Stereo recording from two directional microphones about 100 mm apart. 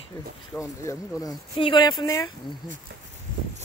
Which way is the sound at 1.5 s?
50° left (ahead or behind).